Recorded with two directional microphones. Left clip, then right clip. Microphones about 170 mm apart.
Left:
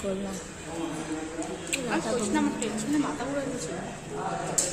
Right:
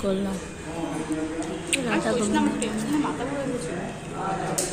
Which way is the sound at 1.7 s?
50° left (ahead or behind).